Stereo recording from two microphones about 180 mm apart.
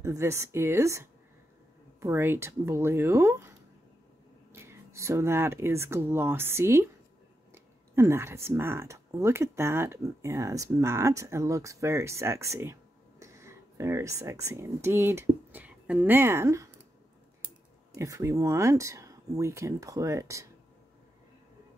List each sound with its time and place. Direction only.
0.0 s speech: 15° right (ahead or behind)
17.9 s speech: 15° right (ahead or behind)